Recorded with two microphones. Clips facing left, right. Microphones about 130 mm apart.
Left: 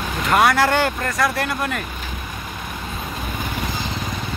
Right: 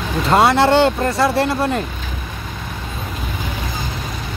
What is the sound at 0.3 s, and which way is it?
Speech, 25° right (ahead or behind).